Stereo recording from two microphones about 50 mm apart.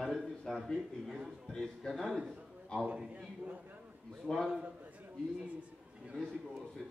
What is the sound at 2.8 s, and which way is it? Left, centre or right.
Speech, right.